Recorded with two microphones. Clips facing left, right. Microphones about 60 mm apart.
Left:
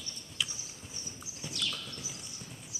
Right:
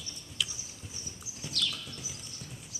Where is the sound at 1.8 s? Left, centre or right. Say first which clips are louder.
Even; centre.